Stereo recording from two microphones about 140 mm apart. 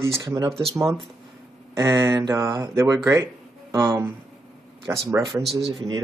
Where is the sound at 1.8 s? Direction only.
20° right (ahead or behind).